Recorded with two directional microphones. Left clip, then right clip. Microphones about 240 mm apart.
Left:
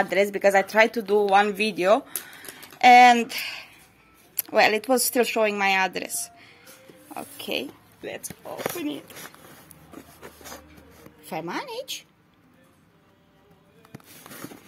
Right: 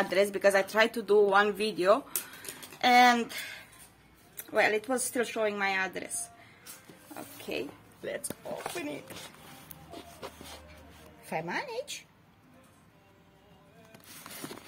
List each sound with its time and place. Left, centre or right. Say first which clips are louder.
0.0 s speech: left 5 dB; centre
7.5 s speech: left 6 dB; left
11.2 s speech: left 3 dB; centre